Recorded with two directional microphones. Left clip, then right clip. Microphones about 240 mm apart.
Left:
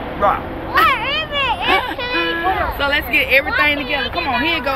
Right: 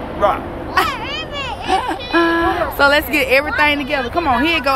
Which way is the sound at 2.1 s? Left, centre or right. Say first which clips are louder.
Right 4 dB; right.